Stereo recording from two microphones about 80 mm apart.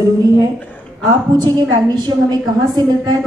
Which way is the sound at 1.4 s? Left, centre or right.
Right.